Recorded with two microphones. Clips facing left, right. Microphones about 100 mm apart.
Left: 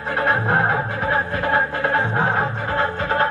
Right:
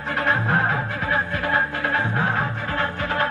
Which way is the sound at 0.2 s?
25° left (ahead or behind).